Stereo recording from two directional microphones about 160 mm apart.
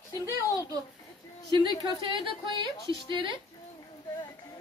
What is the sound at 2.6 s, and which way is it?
Speech, 30° right (ahead or behind).